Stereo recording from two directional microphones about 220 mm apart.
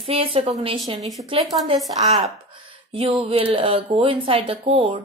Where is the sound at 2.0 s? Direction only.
30° right (ahead or behind).